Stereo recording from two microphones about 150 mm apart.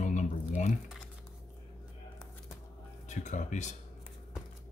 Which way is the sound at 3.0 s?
55° left (ahead or behind).